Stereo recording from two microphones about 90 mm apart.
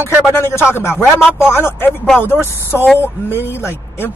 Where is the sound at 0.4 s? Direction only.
30° left (ahead or behind).